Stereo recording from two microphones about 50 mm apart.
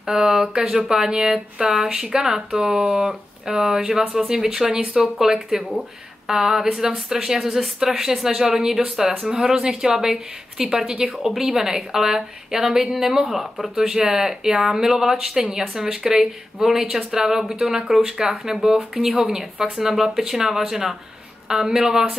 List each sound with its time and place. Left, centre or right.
0.0 s a woman's voice: centre